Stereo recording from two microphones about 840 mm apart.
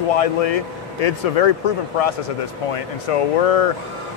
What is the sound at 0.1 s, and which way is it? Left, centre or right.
Speech, left.